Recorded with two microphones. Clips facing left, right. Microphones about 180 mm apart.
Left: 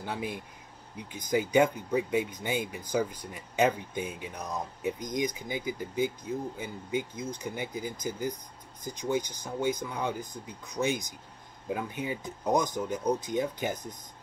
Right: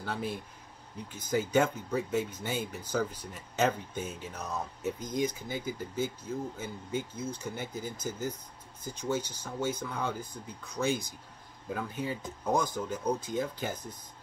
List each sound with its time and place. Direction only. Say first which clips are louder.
0.0 s speech: even; 15° left (ahead or behind)